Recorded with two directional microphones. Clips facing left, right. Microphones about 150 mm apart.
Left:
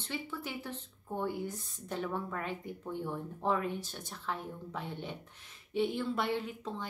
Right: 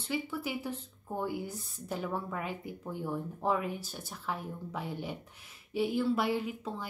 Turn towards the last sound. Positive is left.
turn(degrees=-5)  # may be behind; listen again after turning